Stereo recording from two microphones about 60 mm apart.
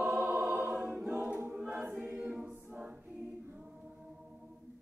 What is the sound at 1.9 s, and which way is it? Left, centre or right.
A capella, right.